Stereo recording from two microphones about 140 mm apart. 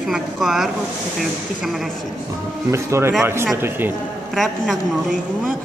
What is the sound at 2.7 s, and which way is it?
Speech, 20° right (ahead or behind).